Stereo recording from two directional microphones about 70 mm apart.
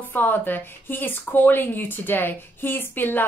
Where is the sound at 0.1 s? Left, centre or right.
Left.